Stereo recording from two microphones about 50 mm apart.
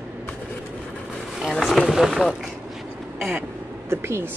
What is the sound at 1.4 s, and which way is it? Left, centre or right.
Speech, centre.